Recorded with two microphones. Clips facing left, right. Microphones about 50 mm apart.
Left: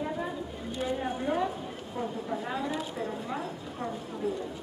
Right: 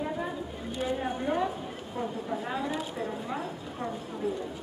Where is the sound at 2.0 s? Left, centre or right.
Centre.